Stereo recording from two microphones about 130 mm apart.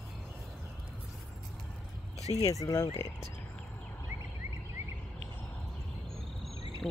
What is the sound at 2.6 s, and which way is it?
Speech, 25° left (ahead or behind).